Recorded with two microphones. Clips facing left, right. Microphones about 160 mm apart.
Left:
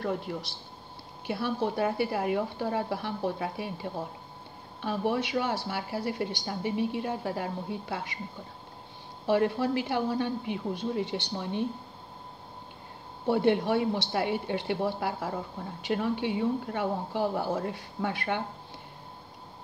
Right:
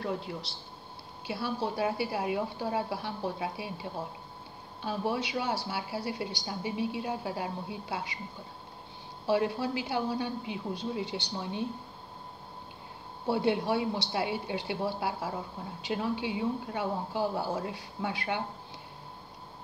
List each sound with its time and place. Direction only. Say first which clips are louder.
0.0 s speech: left 3 dB; 50° left (ahead or behind)
5.1 s speech: left 3 dB; 50° left (ahead or behind)
9.2 s speech: left 3 dB; 55° left (ahead or behind)
13.3 s speech: left 3 dB; 55° left (ahead or behind)